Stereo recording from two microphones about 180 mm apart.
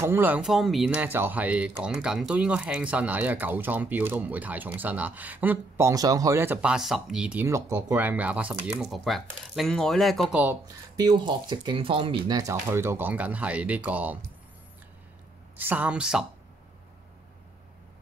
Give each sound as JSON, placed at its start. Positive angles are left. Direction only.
{"t": 0.0, "sound": "speech", "side_deg": -10}
{"t": 10.3, "sound": "speech", "side_deg": -10}
{"t": 15.5, "sound": "speech", "side_deg": -10}